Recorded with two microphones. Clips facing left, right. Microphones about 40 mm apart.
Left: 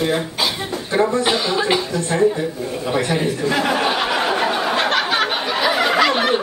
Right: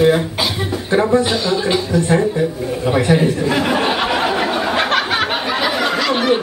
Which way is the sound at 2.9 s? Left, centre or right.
Centre.